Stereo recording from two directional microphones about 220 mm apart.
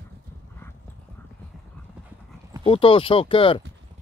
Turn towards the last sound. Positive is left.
turn(degrees=25)  # may be behind; listen again after turning